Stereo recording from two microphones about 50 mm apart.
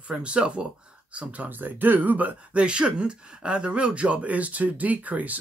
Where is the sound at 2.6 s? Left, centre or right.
Right.